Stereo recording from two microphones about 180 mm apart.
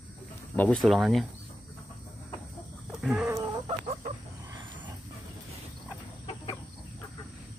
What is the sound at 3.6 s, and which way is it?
Chicken, 45° right (ahead or behind).